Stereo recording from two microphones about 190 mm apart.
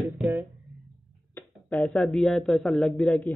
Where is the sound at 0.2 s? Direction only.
Centre (ahead or behind).